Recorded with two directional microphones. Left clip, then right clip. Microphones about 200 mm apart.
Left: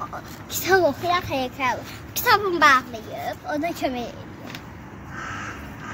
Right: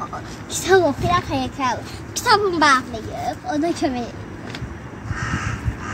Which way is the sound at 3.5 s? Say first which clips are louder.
Right 4 dB; 30° left (ahead or behind).